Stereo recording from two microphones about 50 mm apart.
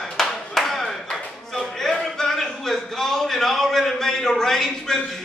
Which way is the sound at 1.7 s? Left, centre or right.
Centre.